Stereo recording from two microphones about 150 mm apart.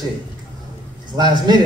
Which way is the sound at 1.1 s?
25° right (ahead or behind).